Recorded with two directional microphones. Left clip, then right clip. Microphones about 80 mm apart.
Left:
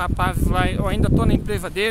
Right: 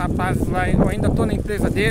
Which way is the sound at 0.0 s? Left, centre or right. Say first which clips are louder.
Even; centre.